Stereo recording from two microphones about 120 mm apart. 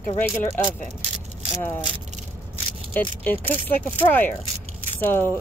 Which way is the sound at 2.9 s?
15° left (ahead or behind).